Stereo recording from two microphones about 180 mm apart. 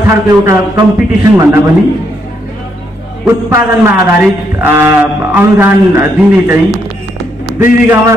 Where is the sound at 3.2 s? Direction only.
15° right (ahead or behind).